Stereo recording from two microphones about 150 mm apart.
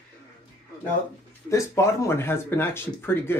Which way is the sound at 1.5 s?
20° left (ahead or behind).